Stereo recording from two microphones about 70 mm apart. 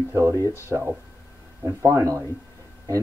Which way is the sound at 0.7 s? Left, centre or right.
Right.